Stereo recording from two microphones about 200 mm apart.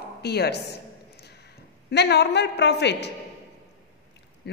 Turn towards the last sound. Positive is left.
turn(degrees=60)  # may be behind; listen again after turning